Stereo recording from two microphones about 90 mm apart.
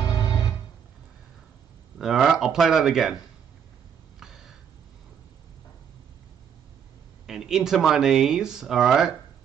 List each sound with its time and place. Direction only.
0.0 s music: 50° left (ahead or behind)
2.0 s speech: 5° right (ahead or behind)
4.2 s gasp: 5° right (ahead or behind)
7.2 s speech: 5° right (ahead or behind)